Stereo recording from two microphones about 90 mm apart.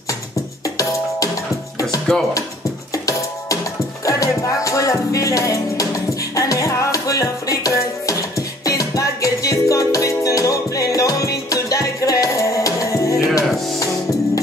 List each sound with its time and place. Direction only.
2.1 s speech: 5° left (ahead or behind)
4.0 s music: 40° left (ahead or behind)